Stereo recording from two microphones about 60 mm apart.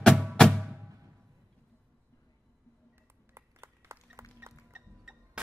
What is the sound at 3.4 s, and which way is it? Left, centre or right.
Clapping, right.